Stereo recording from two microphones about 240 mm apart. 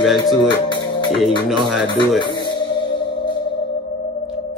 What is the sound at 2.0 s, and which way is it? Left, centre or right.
Music, centre.